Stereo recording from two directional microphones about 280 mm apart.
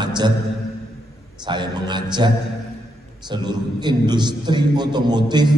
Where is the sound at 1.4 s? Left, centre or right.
Centre.